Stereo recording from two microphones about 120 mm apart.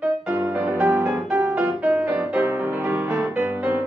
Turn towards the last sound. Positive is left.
turn(degrees=-15)  # may be behind; listen again after turning